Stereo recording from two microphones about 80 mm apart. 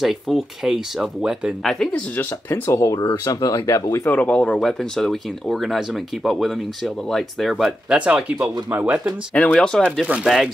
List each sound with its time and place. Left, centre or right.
0.0 s speech: centre
1.9 s speech: left
2.7 s speech: left
4.0 s speech: centre
4.6 s speech: centre
8.0 s speech: centre
9.3 s speech: centre
10.0 s speech: centre